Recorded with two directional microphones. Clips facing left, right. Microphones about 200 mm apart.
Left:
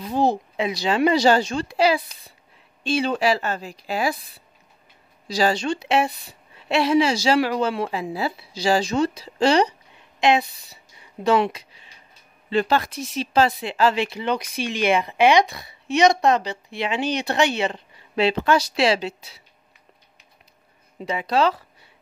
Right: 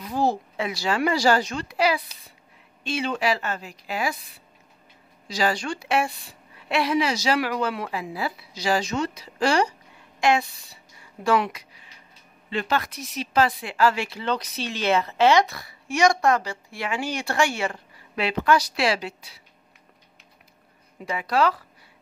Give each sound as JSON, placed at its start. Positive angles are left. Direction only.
{"t": 0.0, "sound": "a woman's voice", "side_deg": 20}
{"t": 5.3, "sound": "a woman's voice", "side_deg": 30}
{"t": 21.0, "sound": "speech", "side_deg": 25}